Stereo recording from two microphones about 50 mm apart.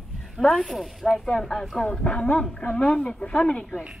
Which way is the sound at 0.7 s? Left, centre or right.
Centre.